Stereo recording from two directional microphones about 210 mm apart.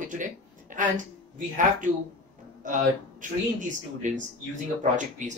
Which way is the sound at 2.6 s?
35° right (ahead or behind).